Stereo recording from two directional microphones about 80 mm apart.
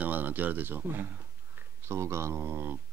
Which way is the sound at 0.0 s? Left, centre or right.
Right.